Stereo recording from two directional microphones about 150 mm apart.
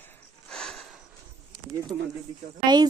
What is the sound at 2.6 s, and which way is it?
Speech, 30° right (ahead or behind).